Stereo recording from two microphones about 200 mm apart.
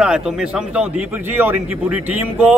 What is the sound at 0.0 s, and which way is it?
A man's voice, 5° right (ahead or behind).